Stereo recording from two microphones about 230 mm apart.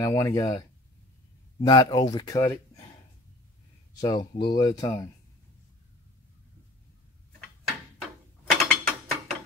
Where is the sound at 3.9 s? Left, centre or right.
Centre.